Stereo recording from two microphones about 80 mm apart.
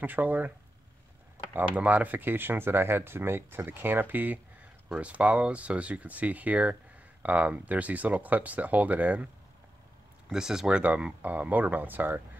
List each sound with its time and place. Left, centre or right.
0.0 s speech: right
1.5 s speech: centre
10.3 s speech: centre; by 12.2 s right